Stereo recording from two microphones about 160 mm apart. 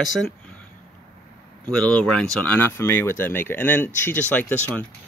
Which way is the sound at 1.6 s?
10° left (ahead or behind).